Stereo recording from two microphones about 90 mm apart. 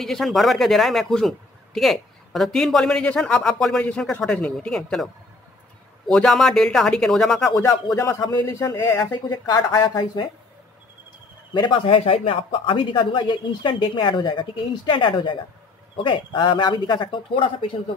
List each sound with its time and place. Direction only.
0.0 s speech: centre (ahead or behind)
7.9 s speech: 35° left (ahead or behind)
9.1 s a woman's voice: 50° left (ahead or behind)
11.5 s speech: 60° left (ahead or behind)